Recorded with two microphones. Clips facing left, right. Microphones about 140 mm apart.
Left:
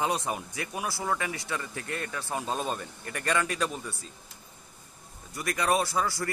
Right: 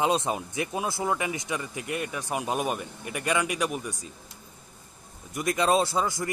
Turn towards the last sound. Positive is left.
turn(degrees=-20)  # may be behind; listen again after turning